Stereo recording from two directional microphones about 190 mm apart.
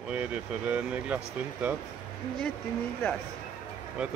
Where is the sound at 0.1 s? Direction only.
5° right (ahead or behind).